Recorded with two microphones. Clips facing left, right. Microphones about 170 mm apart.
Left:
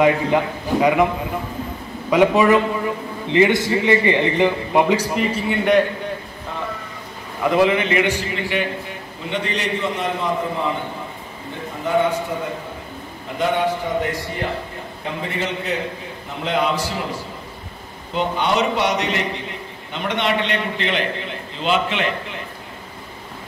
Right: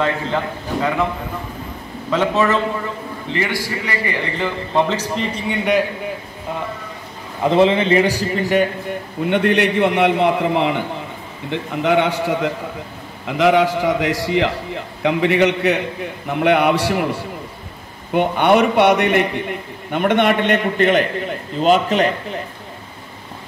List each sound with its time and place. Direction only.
2.0 s a man's voice: 15° left (ahead or behind)
7.4 s a man's voice: 25° right (ahead or behind)
9.2 s a man's voice: 60° right (ahead or behind); by 10.8 s 80° right
11.5 s a man's voice: 90° right
15.0 s a man's voice: 75° right (ahead or behind); by 22.4 s 40° right (ahead or behind)